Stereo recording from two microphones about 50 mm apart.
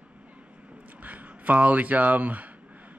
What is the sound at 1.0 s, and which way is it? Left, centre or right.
Speech, right.